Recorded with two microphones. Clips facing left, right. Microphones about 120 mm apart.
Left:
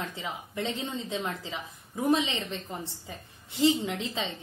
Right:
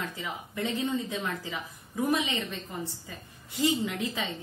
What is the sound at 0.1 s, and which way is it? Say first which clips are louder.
Speech: left 1 dB; 25° left (ahead or behind).